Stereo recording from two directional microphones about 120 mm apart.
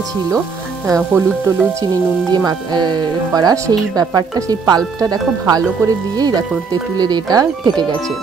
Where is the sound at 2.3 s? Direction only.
35° right (ahead or behind).